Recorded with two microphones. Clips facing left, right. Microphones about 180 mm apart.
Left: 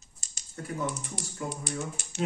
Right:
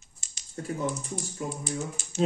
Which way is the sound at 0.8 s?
70° left (ahead or behind).